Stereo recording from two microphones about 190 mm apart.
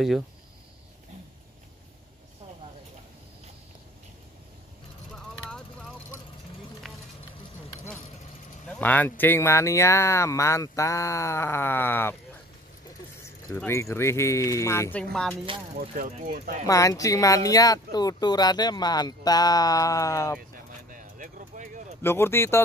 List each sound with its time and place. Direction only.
5.3 s vehicle: 5° left (ahead or behind)
6.8 s run: centre (ahead or behind)
7.7 s vehicle: 15° left (ahead or behind)
8.6 s speech: 5° left (ahead or behind)
13.6 s speech: 15° left (ahead or behind)
15.8 s speech: 45° right (ahead or behind)
16.6 s speech: 15° left (ahead or behind)
20.9 s a sound: 45° right (ahead or behind)
22.0 s speech: 10° left (ahead or behind)